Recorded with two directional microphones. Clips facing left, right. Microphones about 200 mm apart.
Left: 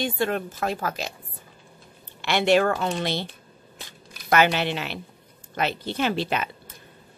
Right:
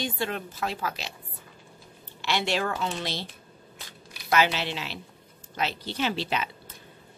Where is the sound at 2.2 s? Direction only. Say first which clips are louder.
Left 8 dB; 55° left (ahead or behind).